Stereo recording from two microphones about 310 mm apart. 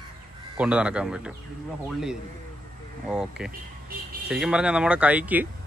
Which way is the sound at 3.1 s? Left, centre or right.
Centre.